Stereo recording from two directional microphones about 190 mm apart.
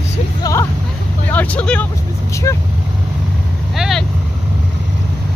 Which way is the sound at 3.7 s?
Centre (ahead or behind).